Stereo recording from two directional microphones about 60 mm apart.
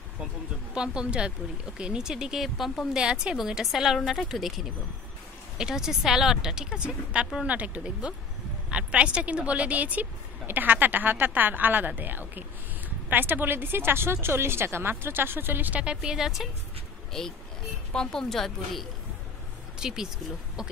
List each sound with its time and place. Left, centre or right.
0.7 s speech: centre
2.9 s a woman's voice: centre; by 15.8 s right
15.8 s speech: centre
17.9 s speech: centre
19.8 s speech: centre